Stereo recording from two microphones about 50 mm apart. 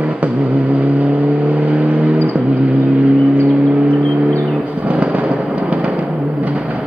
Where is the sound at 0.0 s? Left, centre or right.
Right.